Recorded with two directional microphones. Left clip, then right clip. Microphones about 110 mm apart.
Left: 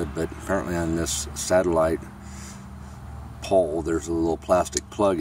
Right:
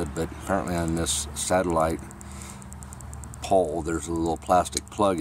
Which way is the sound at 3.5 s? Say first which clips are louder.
Left 2 dB; 20° right (ahead or behind).